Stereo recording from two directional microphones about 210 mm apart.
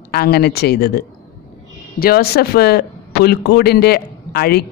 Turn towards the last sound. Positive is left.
turn(degrees=45)  # may be behind; listen again after turning